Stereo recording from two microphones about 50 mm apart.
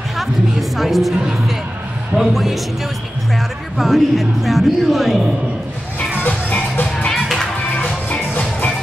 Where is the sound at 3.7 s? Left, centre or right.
Centre.